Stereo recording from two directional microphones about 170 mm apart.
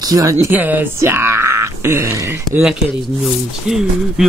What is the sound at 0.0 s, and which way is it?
Speech, 20° right (ahead or behind).